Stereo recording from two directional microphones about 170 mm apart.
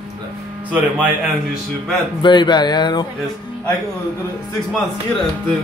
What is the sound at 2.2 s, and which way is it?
Speech, 25° left (ahead or behind).